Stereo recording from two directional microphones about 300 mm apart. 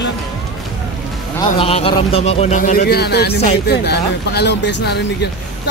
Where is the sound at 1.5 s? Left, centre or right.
Centre.